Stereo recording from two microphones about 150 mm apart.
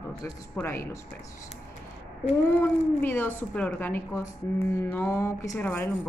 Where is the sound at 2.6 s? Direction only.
15° left (ahead or behind).